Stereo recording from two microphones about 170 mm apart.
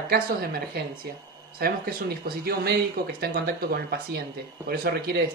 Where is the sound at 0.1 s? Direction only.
65° right (ahead or behind).